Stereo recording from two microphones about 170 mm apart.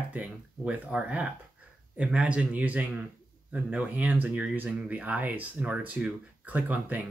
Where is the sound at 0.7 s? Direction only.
5° right (ahead or behind).